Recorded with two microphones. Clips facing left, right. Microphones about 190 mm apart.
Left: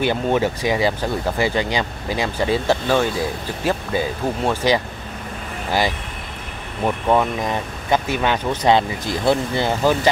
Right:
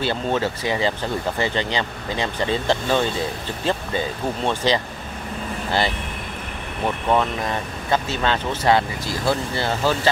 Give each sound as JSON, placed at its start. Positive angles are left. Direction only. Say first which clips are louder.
{"t": 0.0, "sound": "speech", "louder": "left 3 dB", "side_deg": 15}
{"t": 7.1, "sound": "speech", "louder": "left 2 dB", "side_deg": 15}